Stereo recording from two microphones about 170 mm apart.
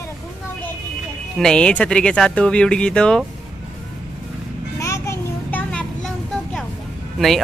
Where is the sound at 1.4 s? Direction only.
5° left (ahead or behind).